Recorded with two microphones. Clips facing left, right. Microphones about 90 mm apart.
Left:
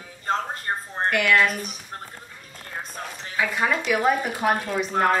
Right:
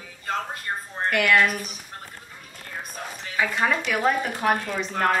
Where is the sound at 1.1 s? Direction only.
Centre (ahead or behind).